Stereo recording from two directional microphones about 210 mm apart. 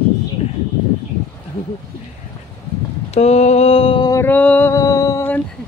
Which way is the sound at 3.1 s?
30° left (ahead or behind).